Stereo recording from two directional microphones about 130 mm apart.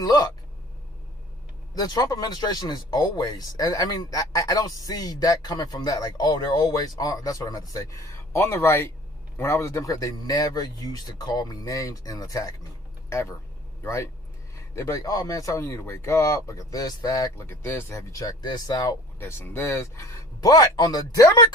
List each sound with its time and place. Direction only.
0.0 s speech: 30° left (ahead or behind)
1.8 s speech: 30° left (ahead or behind)
14.8 s speech: 25° left (ahead or behind)